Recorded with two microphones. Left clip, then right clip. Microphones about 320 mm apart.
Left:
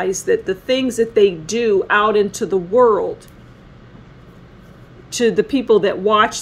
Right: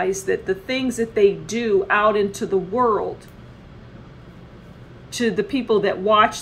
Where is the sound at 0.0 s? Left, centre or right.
Left.